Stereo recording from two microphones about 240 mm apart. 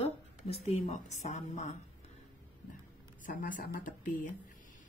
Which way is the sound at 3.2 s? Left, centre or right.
Left.